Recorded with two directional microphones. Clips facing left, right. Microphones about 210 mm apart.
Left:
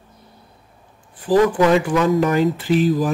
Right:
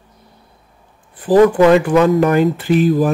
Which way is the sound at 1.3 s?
60° right (ahead or behind).